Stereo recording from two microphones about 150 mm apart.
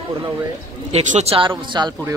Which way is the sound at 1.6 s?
30° right (ahead or behind).